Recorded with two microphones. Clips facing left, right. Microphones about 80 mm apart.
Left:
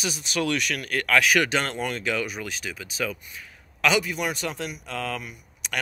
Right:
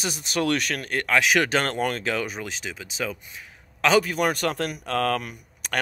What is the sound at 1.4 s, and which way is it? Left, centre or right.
Speech, right.